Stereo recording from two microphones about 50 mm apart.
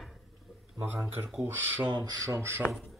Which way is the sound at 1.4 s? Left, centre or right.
Right.